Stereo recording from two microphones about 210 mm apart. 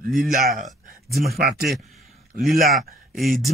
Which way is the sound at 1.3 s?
45° right (ahead or behind).